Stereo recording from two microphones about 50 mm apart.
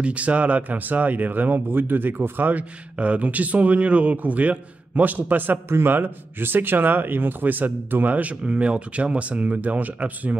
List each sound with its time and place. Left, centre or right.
0.0 s speech: right
5.7 s speech: right